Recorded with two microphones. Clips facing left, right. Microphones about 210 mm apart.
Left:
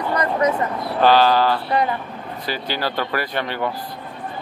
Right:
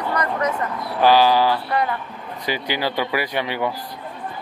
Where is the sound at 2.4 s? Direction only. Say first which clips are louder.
Right 2 dB; 15° right (ahead or behind).